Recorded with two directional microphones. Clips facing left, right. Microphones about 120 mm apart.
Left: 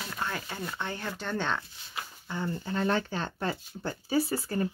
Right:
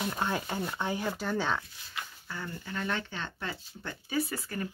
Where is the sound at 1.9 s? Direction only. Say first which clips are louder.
Left 3 dB; 25° left (ahead or behind).